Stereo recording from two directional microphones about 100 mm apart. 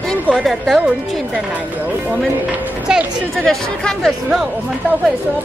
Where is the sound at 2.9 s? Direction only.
10° right (ahead or behind).